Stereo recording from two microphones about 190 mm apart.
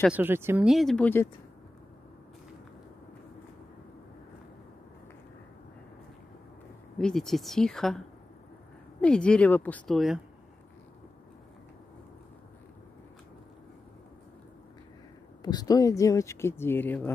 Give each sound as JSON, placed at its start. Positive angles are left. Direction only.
{"t": 0.0, "sound": "speech", "side_deg": -10}
{"t": 0.7, "sound": "a woman's voice", "side_deg": 0}
{"t": 7.0, "sound": "a woman's voice", "side_deg": 5}
{"t": 9.0, "sound": "a woman's voice", "side_deg": 5}
{"t": 15.4, "sound": "speech", "side_deg": 20}